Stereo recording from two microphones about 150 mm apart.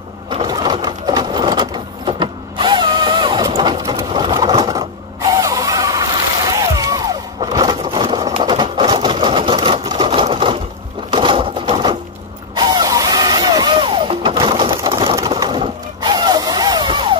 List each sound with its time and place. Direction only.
0.3 s sewing machine: 30° right (ahead or behind)
4.2 s vehicle: 30° right (ahead or behind)
5.4 s a sound: 25° right (ahead or behind)
11.1 s sewing machine: 35° right (ahead or behind)
11.7 s coin: 35° right (ahead or behind)
12.5 s music: 30° right (ahead or behind)
15.2 s a sound: 30° right (ahead or behind)